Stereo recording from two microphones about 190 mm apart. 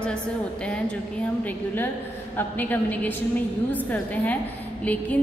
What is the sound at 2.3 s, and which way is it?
A woman's voice, 10° left (ahead or behind).